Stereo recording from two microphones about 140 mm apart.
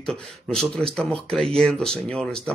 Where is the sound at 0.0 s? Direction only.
5° left (ahead or behind).